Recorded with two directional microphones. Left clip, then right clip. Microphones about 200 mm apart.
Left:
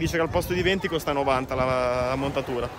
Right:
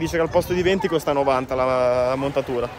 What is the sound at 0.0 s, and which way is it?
A man's voice, 10° left (ahead or behind).